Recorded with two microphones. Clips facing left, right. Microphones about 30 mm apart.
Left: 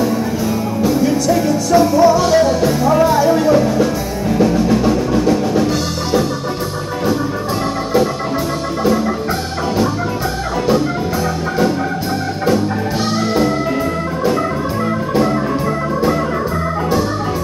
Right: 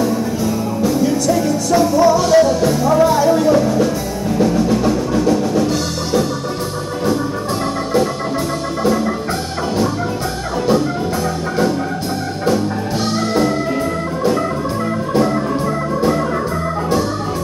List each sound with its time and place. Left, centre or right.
0.8 s music: centre